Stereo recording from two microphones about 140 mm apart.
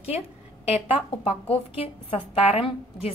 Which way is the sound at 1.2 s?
45° left (ahead or behind).